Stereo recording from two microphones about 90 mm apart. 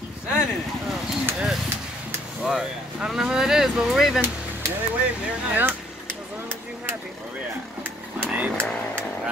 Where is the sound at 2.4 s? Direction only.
5° right (ahead or behind).